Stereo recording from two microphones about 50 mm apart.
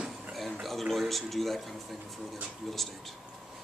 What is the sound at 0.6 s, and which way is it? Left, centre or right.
Speech, centre.